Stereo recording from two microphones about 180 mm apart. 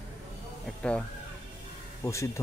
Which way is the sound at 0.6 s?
5° left (ahead or behind).